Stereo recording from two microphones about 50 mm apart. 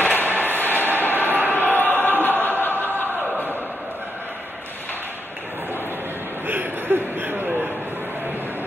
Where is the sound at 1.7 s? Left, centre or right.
Left.